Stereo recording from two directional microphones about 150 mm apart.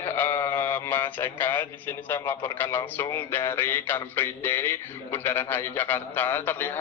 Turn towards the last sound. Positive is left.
turn(degrees=15)  # may be behind; listen again after turning